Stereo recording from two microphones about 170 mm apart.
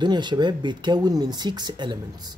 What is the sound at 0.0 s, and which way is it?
Speech, 25° right (ahead or behind).